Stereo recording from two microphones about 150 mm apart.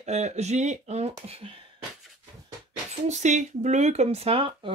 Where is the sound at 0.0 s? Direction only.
50° right (ahead or behind).